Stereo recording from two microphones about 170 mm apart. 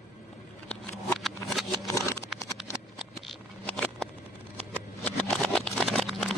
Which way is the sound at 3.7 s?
5° left (ahead or behind).